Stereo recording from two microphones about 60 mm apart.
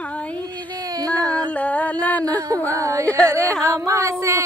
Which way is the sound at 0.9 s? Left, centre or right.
Right.